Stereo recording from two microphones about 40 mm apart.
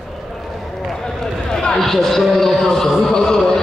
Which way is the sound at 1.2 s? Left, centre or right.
Centre.